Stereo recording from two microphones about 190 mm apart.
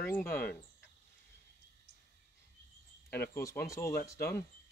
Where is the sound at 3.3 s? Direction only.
15° left (ahead or behind).